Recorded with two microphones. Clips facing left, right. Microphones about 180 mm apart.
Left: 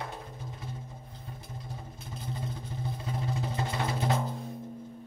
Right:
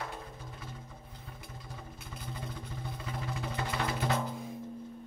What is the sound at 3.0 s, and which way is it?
Music, 30° left (ahead or behind).